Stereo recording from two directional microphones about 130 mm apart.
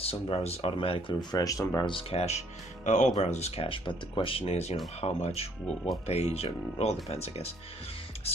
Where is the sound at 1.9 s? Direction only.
50° left (ahead or behind); by 3.1 s 70° left (ahead or behind).